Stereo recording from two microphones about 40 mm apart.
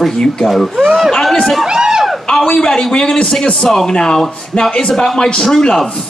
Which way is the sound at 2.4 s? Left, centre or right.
Centre.